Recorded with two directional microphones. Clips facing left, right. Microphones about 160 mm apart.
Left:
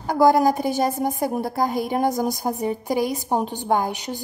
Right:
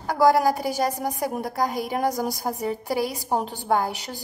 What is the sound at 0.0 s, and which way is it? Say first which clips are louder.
A woman's voice: left 2 dB; 25° left (ahead or behind).